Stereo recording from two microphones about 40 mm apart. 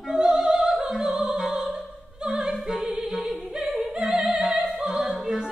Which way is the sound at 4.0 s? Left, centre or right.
Centre.